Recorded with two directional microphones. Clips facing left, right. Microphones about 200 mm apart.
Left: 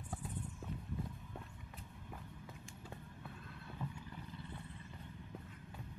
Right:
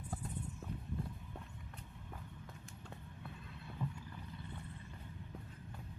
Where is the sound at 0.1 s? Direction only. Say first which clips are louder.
Right 1 dB; centre (ahead or behind).